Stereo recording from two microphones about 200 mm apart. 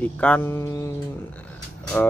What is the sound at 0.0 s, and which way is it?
Speech, 10° left (ahead or behind).